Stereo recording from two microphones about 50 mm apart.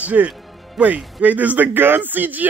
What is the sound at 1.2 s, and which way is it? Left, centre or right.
Speech, right.